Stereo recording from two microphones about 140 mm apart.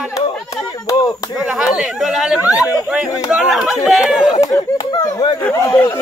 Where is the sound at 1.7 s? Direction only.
5° right (ahead or behind).